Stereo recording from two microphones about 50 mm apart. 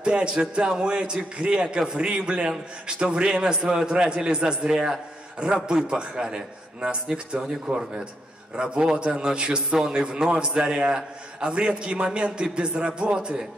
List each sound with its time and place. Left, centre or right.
0.0 s a man's voice: right